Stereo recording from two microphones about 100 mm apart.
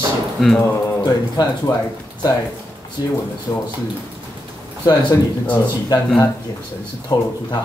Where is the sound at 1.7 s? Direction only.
40° left (ahead or behind).